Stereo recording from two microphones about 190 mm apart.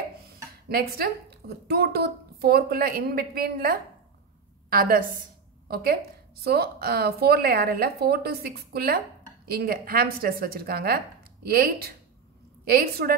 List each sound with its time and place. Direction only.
0.7 s a woman's voice: 55° right (ahead or behind)